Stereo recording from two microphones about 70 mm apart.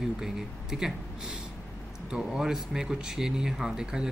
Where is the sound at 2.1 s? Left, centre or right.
Centre.